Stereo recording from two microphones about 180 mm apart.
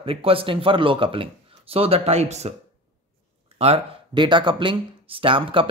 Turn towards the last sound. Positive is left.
turn(degrees=-30)  # may be behind; listen again after turning